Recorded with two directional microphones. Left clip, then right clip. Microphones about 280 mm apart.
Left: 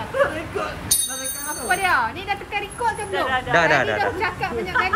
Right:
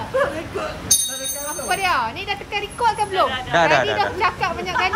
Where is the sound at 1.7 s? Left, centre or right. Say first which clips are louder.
Left 1 dB; centre.